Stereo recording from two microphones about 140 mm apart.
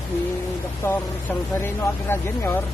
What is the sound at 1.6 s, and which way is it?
Speech, 15° left (ahead or behind).